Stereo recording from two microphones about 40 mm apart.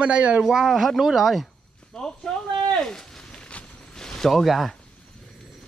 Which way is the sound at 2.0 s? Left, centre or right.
Centre.